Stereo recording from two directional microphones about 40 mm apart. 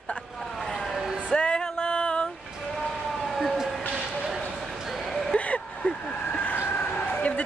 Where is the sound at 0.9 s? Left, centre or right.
Centre.